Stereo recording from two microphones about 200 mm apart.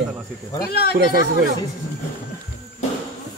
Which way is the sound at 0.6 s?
50° left (ahead or behind).